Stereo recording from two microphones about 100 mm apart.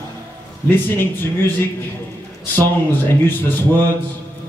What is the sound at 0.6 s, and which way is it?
A man's voice, 20° left (ahead or behind).